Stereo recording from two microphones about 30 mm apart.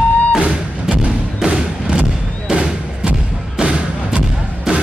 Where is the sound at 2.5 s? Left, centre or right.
Right.